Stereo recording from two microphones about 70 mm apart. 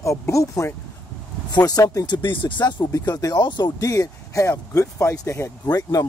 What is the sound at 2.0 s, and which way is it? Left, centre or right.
Speech, left.